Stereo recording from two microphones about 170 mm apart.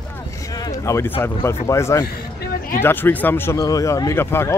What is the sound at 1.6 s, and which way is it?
Speech, 15° left (ahead or behind).